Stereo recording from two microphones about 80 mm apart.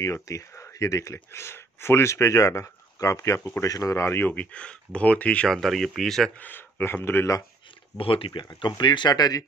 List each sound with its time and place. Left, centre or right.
0.0 s speech: left
3.6 s speech: left; by 5.5 s centre
5.5 s speech: centre
6.3 s speech: left
8.5 s speech: left